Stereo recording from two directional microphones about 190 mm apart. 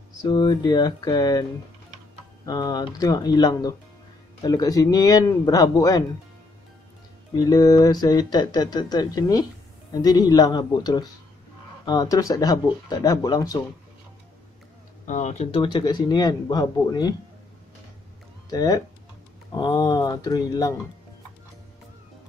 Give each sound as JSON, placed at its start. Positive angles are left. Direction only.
{"t": 0.2, "sound": "speech", "side_deg": 20}
{"t": 2.4, "sound": "speech", "side_deg": 20}
{"t": 7.3, "sound": "speech", "side_deg": 20}
{"t": 15.0, "sound": "speech", "side_deg": 40}
{"t": 15.5, "sound": "speech", "side_deg": 25}
{"t": 18.5, "sound": "speech", "side_deg": 20}